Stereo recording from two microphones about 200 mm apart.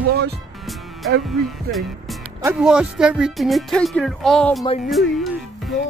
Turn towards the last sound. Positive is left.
turn(degrees=0)  # may be behind; listen again after turning